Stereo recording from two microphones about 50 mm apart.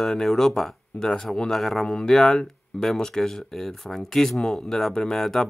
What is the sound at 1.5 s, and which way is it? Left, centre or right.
Speech, centre.